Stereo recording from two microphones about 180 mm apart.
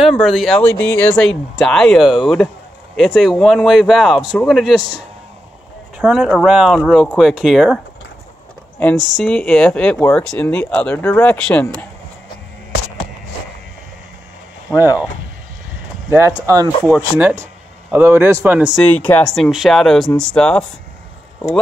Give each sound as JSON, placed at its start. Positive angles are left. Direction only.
{"t": 0.0, "sound": "speech", "side_deg": 0}
{"t": 5.9, "sound": "speech", "side_deg": -5}
{"t": 14.7, "sound": "speech", "side_deg": -10}
{"t": 16.1, "sound": "speech", "side_deg": -15}
{"t": 18.9, "sound": "speech", "side_deg": 10}